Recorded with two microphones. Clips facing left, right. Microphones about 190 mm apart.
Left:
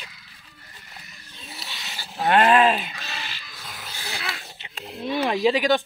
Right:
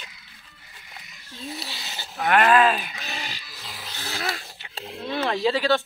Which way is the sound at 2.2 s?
25° left (ahead or behind).